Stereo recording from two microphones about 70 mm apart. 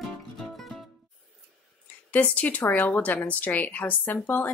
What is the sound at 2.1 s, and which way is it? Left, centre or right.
A woman's voice, left.